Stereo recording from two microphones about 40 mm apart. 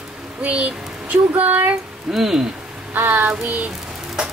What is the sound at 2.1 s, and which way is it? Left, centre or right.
Speech, centre.